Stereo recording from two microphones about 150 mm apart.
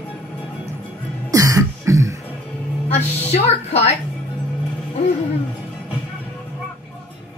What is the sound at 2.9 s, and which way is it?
A woman's voice, 45° left (ahead or behind).